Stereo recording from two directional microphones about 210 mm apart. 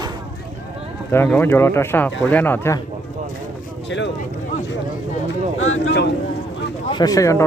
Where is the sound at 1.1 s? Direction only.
10° left (ahead or behind).